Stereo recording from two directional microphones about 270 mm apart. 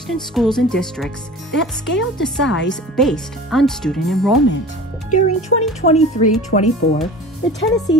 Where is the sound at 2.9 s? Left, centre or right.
Centre.